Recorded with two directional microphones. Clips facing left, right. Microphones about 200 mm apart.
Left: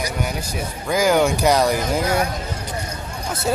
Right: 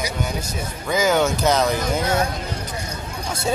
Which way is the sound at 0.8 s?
10° left (ahead or behind).